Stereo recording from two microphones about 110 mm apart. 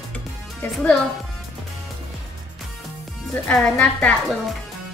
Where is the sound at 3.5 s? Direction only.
10° left (ahead or behind).